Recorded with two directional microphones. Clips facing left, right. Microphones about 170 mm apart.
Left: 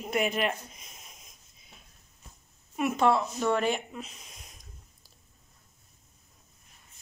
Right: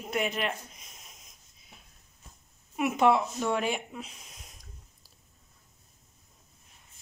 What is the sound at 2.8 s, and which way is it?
Speech, 15° right (ahead or behind).